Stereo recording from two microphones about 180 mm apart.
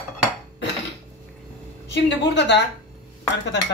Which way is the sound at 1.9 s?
75° left (ahead or behind).